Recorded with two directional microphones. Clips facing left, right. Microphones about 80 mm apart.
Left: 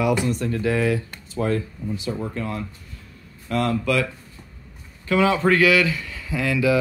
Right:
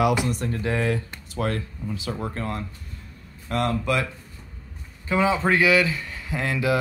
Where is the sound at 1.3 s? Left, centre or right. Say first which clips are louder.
Left 4 dB; right.